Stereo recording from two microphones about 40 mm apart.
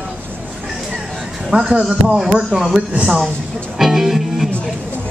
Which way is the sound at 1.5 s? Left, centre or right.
Right.